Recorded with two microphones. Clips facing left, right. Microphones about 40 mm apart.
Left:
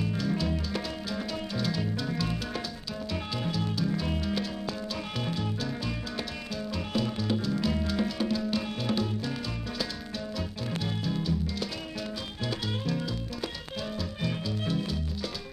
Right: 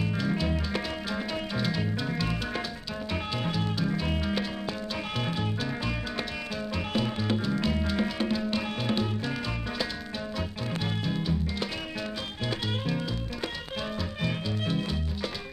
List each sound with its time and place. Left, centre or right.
0.0 s music: right
6.9 s music: right
11.1 s music: right
14.2 s music: right